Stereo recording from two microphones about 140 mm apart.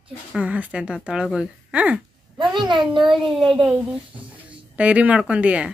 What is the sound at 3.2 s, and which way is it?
Speech, centre (ahead or behind).